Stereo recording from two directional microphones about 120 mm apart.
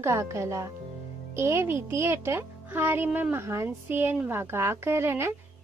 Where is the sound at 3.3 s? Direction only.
20° right (ahead or behind).